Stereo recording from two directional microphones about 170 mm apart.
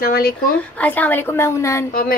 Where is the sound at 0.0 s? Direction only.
60° left (ahead or behind).